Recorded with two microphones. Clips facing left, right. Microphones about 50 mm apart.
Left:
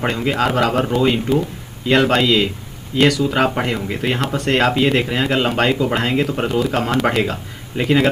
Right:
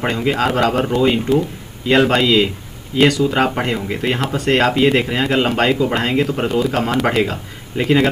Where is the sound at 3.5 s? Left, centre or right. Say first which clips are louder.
Right 1 dB; centre.